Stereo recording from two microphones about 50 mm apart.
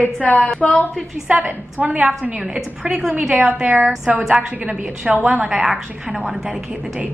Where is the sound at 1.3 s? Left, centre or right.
Right.